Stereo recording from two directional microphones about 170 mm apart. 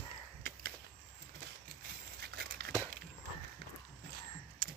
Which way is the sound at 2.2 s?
75° right (ahead or behind).